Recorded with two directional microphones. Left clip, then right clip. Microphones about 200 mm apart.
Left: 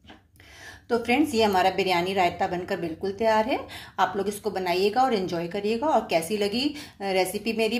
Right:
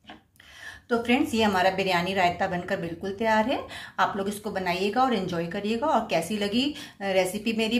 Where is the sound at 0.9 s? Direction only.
20° left (ahead or behind).